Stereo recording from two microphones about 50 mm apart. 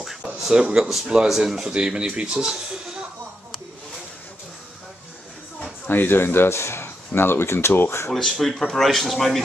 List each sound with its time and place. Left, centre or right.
0.0 s a sound: centre
0.4 s speech: centre
5.9 s speech: left
8.1 s speech: centre